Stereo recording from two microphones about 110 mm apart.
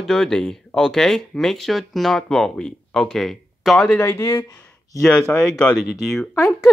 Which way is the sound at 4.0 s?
25° left (ahead or behind).